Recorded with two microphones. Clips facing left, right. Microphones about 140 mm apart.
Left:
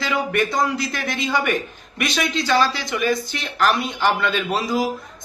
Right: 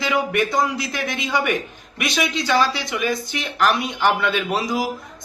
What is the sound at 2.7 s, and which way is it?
A man's voice, 20° right (ahead or behind).